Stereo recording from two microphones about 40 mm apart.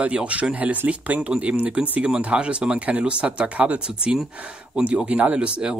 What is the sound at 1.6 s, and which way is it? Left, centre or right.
Speech, right.